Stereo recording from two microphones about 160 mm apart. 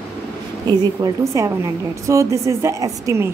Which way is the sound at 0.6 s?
20° right (ahead or behind).